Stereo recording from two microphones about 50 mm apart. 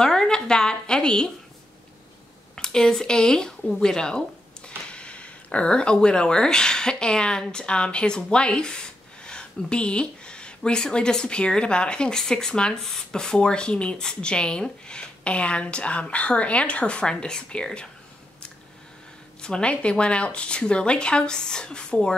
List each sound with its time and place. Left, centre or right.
0.0 s a sound: centre
2.5 s speech: centre
19.4 s speech: centre